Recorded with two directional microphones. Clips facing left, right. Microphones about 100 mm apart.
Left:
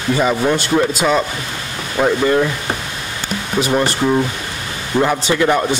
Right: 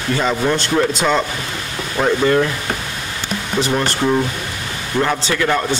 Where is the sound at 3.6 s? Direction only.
10° left (ahead or behind).